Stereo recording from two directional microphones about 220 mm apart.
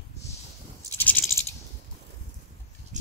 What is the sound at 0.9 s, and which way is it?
Rattle, 5° left (ahead or behind).